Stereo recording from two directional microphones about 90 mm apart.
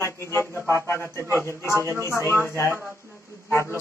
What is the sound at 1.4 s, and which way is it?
Speech, 30° left (ahead or behind).